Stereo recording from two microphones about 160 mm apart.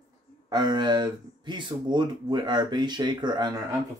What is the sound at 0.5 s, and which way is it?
Speech, 25° right (ahead or behind).